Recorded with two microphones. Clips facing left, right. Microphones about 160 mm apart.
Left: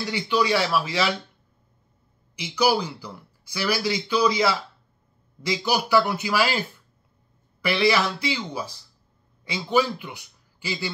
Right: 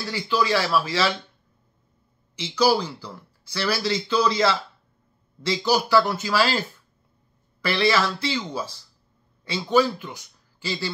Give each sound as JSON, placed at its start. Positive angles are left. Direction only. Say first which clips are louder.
{"t": 0.1, "sound": "speech", "louder": "even", "side_deg": 20}
{"t": 2.3, "sound": "speech", "louder": "right 1 dB", "side_deg": 15}
{"t": 7.6, "sound": "a man's voice", "louder": "even", "side_deg": 15}